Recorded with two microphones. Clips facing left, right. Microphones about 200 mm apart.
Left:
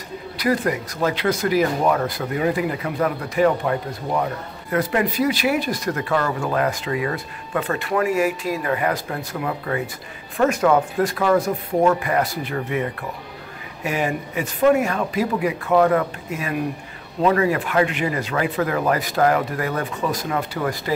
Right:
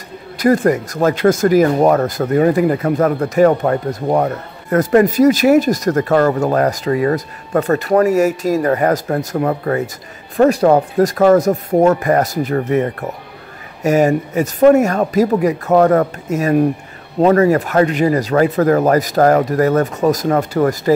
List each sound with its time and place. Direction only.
0.4 s speech: 45° right (ahead or behind)